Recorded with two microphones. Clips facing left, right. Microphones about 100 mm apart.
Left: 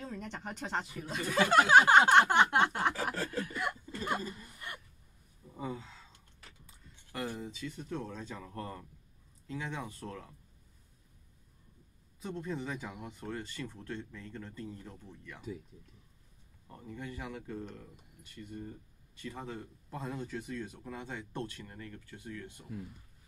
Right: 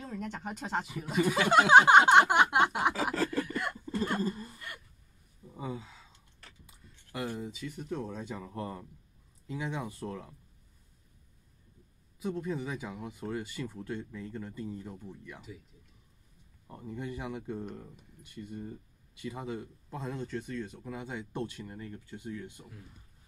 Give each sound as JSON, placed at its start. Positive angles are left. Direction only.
{"t": 0.0, "sound": "speech", "side_deg": -5}
{"t": 1.3, "sound": "speech", "side_deg": -15}
{"t": 3.2, "sound": "chuckle", "side_deg": -65}
{"t": 4.2, "sound": "speech", "side_deg": -35}
{"t": 4.6, "sound": "a sound", "side_deg": 20}
{"t": 5.4, "sound": "a sound", "side_deg": -5}
{"t": 7.1, "sound": "speech", "side_deg": -5}
{"t": 12.2, "sound": "speech", "side_deg": -5}
{"t": 16.9, "sound": "speech", "side_deg": -20}